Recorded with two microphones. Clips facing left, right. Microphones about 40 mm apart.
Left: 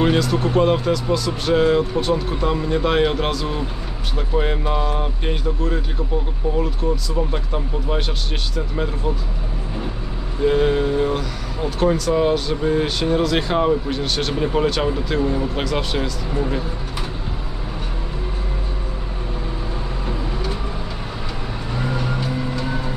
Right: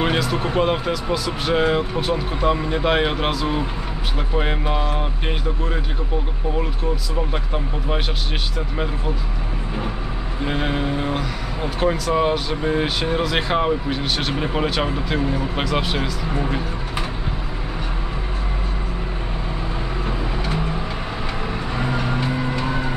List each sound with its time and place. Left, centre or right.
0.0 s speech: centre
7.2 s speech: centre
10.4 s speech: centre
21.7 s vehicle: right